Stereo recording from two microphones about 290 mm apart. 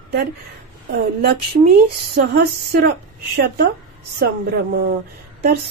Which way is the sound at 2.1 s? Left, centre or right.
Right.